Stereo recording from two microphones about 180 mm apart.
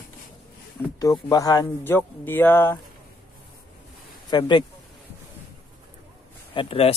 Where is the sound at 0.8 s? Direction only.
15° left (ahead or behind).